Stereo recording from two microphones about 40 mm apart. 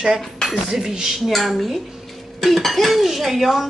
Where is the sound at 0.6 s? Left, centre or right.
Centre.